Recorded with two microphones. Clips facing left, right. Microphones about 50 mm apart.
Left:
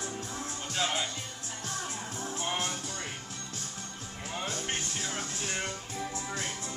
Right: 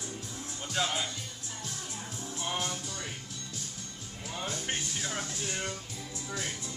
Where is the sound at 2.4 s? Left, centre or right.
Left.